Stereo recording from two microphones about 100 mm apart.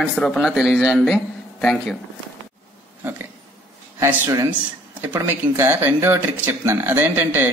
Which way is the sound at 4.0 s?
25° right (ahead or behind).